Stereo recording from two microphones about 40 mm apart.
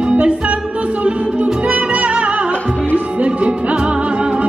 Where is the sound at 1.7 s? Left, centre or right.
Right.